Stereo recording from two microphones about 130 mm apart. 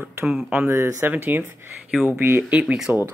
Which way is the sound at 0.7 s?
20° right (ahead or behind).